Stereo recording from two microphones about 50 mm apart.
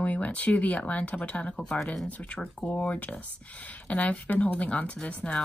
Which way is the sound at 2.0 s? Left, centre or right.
Left.